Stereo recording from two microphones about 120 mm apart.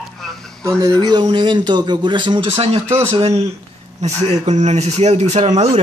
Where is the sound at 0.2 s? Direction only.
5° left (ahead or behind).